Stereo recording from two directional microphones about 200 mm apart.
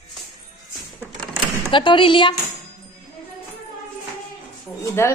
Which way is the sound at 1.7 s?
25° left (ahead or behind).